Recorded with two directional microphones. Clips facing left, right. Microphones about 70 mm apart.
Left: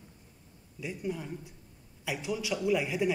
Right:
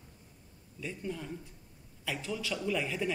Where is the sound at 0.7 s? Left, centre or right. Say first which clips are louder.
Left 3 dB; centre.